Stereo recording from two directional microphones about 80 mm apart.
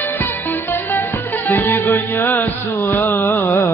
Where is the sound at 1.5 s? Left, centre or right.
Left.